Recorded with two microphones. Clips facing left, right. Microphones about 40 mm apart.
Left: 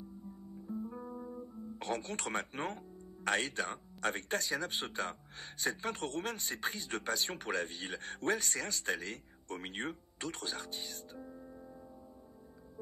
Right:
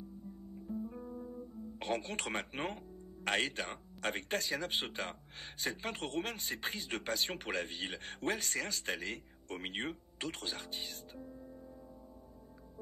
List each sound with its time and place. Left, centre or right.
0.7 s guitar: centre
1.0 s guitar: left
1.8 s speech: centre
11.1 s music: centre